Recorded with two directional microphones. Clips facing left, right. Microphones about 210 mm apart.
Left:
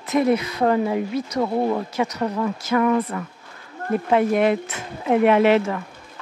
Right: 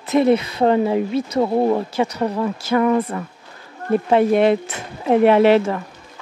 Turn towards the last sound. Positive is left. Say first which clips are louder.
# right 3 dB
turn(degrees=-35)  # may be behind; listen again after turning